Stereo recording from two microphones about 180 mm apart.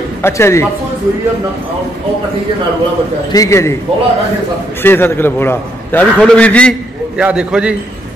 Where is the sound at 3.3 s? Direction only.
20° left (ahead or behind).